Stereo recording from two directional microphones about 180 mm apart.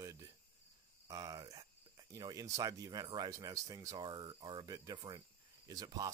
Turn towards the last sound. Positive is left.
turn(degrees=-20)  # may be behind; listen again after turning